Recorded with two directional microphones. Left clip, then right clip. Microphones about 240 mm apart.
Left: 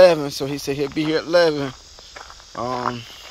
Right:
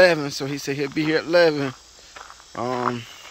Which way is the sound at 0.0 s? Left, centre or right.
Centre.